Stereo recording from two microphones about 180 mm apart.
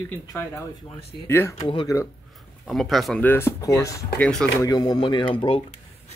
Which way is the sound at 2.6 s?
Centre (ahead or behind).